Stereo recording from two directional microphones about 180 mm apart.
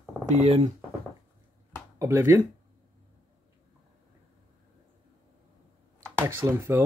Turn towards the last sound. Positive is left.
turn(degrees=-15)  # may be behind; listen again after turning